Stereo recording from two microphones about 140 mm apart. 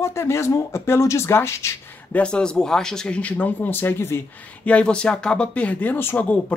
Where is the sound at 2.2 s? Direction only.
5° left (ahead or behind).